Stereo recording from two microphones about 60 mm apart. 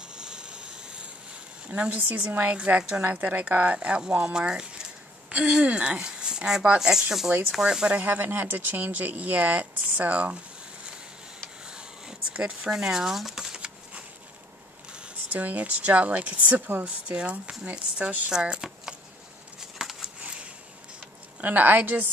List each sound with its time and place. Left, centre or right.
0.0 s rub: centre
1.7 s speech: right
8.0 s speech: right
11.6 s a sound: centre
15.4 s speech: right
18.3 s a sound: centre
21.4 s speech: right